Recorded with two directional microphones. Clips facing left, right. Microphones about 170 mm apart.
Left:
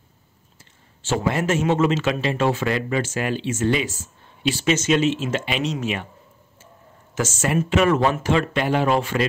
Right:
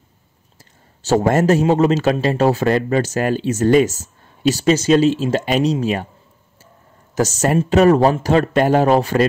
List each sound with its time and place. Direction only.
0.6 s a man's voice: 40° right (ahead or behind)
7.2 s a man's voice: 40° right (ahead or behind)